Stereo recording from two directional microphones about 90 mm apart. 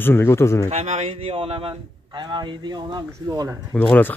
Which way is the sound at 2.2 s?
55° right (ahead or behind).